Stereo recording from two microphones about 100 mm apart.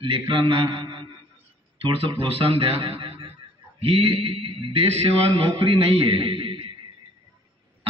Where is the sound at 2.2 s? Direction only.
65° right (ahead or behind).